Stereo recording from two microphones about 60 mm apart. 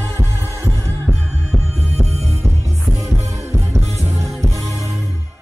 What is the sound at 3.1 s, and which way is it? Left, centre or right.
Music, right.